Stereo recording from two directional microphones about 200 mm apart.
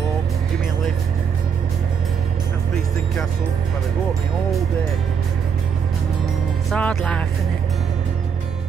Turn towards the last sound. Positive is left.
turn(degrees=5)  # may be behind; listen again after turning